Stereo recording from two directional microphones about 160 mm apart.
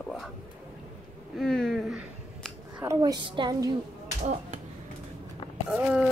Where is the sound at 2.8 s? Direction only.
20° right (ahead or behind).